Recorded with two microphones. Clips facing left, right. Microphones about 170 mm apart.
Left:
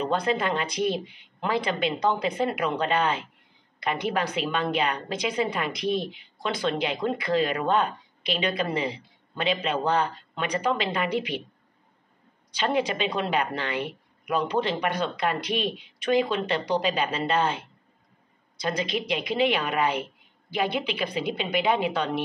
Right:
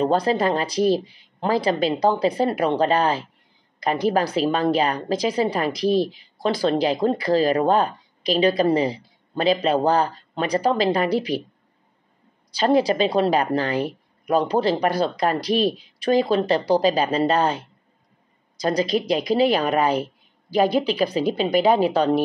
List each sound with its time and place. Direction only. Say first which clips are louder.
0.0 s a woman's voice: right 6 dB; 35° right (ahead or behind)
12.4 s a woman's voice: right 7 dB; 35° right (ahead or behind)